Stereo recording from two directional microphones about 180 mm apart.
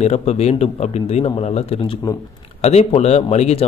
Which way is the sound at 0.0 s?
35° left (ahead or behind).